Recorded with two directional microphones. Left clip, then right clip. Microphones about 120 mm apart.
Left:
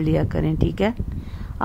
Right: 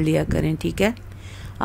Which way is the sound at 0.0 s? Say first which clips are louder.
Right 1 dB; 5° right (ahead or behind).